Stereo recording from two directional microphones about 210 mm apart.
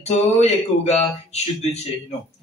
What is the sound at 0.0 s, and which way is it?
Speech, 30° left (ahead or behind).